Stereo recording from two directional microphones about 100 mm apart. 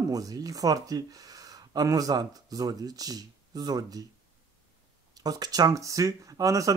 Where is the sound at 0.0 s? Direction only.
35° right (ahead or behind).